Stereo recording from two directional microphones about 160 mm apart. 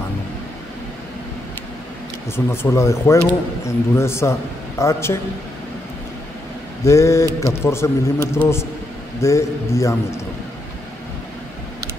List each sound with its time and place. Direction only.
2.3 s speech: 15° left (ahead or behind)
6.8 s a sound: 20° left (ahead or behind)
7.6 s speech: 15° left (ahead or behind)